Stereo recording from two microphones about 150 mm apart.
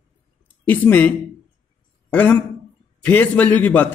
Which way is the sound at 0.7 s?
10° left (ahead or behind).